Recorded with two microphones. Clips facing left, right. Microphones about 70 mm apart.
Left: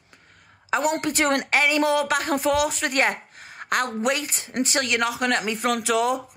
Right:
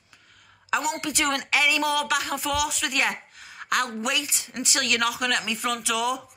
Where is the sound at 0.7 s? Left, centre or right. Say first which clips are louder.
Left 4 dB; left.